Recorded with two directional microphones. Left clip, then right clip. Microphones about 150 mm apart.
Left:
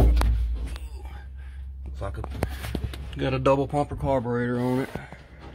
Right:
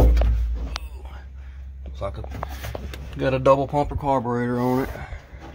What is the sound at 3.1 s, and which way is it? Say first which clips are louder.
Speech: right 5 dB; 20° right (ahead or behind).